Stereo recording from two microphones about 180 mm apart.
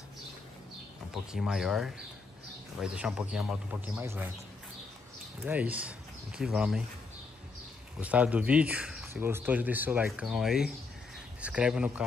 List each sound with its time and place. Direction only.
1.1 s a man's voice: 5° right (ahead or behind)
5.4 s speech: 10° right (ahead or behind)
8.0 s speech: 5° right (ahead or behind)